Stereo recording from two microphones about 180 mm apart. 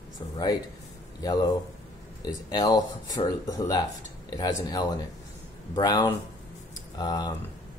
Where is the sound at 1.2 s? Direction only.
20° left (ahead or behind).